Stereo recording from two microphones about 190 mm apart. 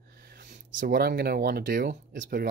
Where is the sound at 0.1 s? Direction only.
55° right (ahead or behind).